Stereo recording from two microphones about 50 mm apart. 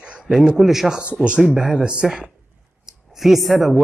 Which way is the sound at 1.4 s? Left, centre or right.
Centre.